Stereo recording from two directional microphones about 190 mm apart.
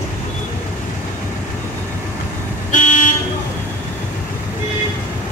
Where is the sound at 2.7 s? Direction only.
40° left (ahead or behind).